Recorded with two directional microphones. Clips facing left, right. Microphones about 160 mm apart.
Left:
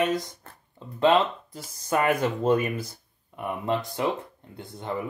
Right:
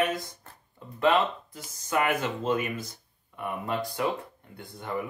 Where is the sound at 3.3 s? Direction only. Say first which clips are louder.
Left 3 dB; 25° left (ahead or behind).